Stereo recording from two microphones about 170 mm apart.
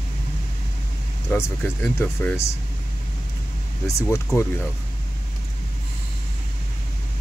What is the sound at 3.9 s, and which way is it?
Speech, 15° left (ahead or behind).